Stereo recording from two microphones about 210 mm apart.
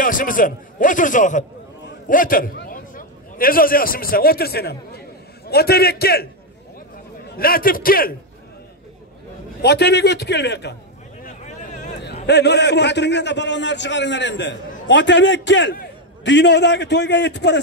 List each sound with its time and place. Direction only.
0.0 s a man's voice: 40° left (ahead or behind)
7.2 s a man's voice: 45° left (ahead or behind)
9.6 s a man's voice: 50° left (ahead or behind)
11.2 s vehicle: 35° left (ahead or behind)
12.3 s a man's voice: 55° left (ahead or behind)